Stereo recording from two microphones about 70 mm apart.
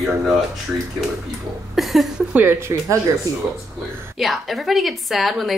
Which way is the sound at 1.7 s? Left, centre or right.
Centre.